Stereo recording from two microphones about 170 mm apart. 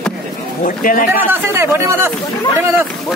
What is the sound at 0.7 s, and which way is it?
Speech, 55° left (ahead or behind).